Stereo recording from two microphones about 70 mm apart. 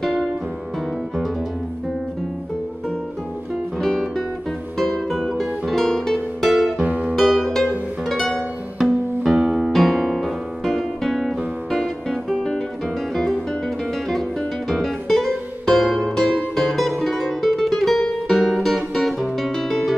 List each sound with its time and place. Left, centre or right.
0.0 s music: centre
3.8 s music: centre
6.8 s music: centre
7.2 s music: centre
14.7 s music: centre